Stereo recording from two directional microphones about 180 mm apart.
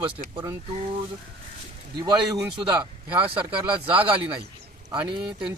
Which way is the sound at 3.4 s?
10° right (ahead or behind).